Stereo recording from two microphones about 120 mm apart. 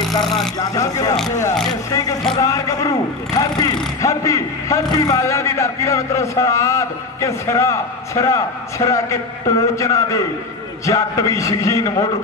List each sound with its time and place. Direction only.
0.1 s speech: centre (ahead or behind)
0.6 s a man's voice: 30° left (ahead or behind)